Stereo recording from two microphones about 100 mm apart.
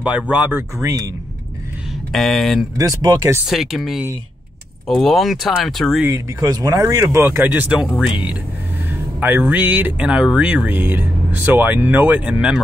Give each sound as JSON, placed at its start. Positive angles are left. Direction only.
{"t": 0.0, "sound": "speech", "side_deg": -15}
{"t": 0.8, "sound": "speech", "side_deg": -35}
{"t": 2.1, "sound": "speech", "side_deg": 5}
{"t": 2.8, "sound": "speech", "side_deg": -40}
{"t": 3.4, "sound": "speech", "side_deg": 0}
{"t": 6.1, "sound": "speech", "side_deg": -35}
{"t": 7.9, "sound": "speech", "side_deg": -5}